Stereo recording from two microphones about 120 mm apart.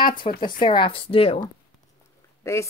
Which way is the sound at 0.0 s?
40° left (ahead or behind).